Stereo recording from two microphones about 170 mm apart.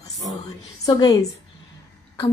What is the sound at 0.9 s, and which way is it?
Speech, 25° left (ahead or behind).